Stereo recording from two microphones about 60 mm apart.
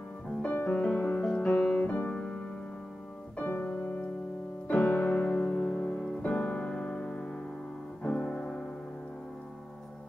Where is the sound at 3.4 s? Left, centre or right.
Left.